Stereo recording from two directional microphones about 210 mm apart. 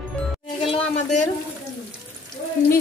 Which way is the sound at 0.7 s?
35° left (ahead or behind).